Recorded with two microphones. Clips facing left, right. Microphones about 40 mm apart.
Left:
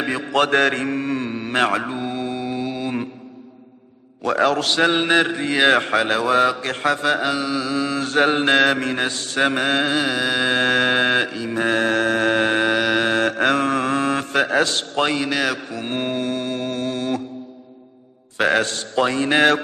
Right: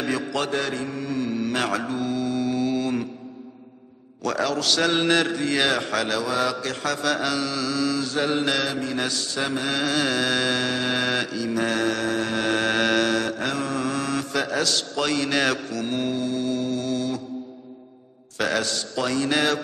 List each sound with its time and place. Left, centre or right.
0.3 s mantra: left
4.2 s a man's voice: left
8.0 s mantra: left
9.0 s a man's voice: left
9.9 s carnatic music: centre
10.5 s a man's voice: left
12.5 s carnatic music: centre
13.0 s mantra: left
13.3 s a man's voice: left
15.1 s carnatic music: centre
15.7 s a man's voice: left
18.4 s a man's voice: left